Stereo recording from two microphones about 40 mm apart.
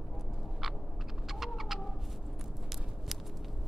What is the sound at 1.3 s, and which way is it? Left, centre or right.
Cat, centre.